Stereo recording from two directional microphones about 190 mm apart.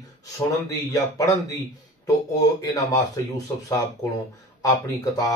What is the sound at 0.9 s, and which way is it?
Speech, 20° left (ahead or behind).